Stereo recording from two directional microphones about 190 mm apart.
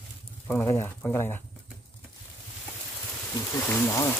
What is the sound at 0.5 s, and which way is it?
Speech, 10° left (ahead or behind).